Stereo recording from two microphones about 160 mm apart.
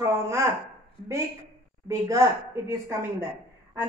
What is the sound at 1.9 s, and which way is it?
Speech, 20° right (ahead or behind).